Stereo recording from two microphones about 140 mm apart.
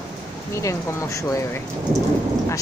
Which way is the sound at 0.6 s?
20° left (ahead or behind).